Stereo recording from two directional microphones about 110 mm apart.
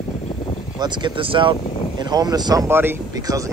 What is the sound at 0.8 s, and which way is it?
Speech, 45° right (ahead or behind).